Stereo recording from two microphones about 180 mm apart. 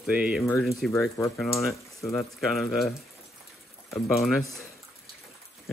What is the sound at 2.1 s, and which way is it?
Speech, centre (ahead or behind).